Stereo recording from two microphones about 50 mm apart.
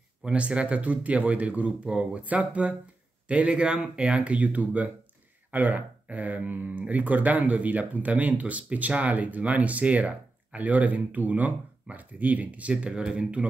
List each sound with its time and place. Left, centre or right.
0.2 s speech: right
12.9 s speech: centre